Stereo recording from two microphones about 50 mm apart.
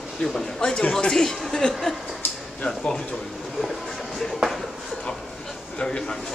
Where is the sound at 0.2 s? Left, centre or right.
Centre.